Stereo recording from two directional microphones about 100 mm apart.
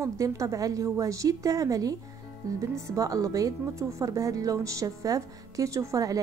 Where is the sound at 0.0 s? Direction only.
30° right (ahead or behind).